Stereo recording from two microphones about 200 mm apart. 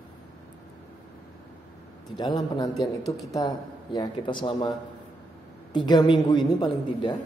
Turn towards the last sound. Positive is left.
turn(degrees=25)  # may be behind; listen again after turning